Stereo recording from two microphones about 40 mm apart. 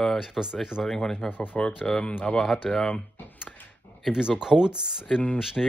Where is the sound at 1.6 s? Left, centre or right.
Left.